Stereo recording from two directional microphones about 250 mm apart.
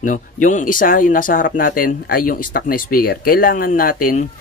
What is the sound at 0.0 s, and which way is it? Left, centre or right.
Speech, left.